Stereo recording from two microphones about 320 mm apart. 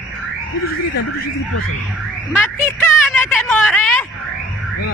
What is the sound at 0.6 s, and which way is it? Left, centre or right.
Speech, left.